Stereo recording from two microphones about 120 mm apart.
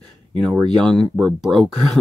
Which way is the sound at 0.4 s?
10° left (ahead or behind).